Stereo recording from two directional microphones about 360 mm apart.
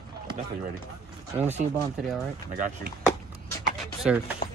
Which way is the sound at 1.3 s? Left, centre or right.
Centre.